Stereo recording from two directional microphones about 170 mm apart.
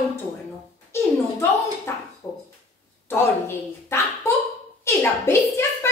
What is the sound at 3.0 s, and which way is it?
A child's voice, 15° left (ahead or behind).